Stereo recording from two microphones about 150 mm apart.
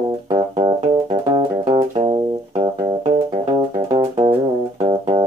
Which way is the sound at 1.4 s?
35° right (ahead or behind).